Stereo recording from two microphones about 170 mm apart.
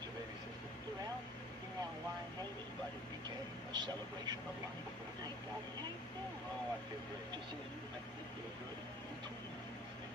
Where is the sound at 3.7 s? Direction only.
25° right (ahead or behind).